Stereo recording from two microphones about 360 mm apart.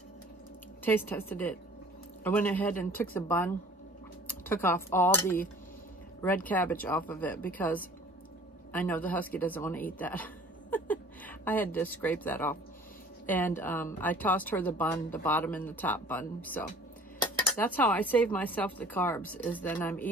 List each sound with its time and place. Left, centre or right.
0.8 s a woman's voice: centre